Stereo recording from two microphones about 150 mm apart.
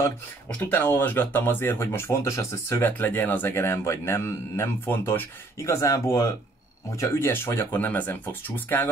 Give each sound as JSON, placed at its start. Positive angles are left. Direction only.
{"t": 0.6, "sound": "speech", "side_deg": 15}